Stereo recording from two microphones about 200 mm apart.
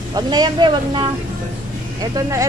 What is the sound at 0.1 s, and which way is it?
Speech, 20° right (ahead or behind).